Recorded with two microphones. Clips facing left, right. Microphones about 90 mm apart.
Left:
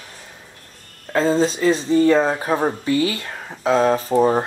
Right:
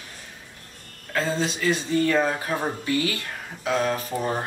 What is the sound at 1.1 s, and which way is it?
Speech, 35° left (ahead or behind).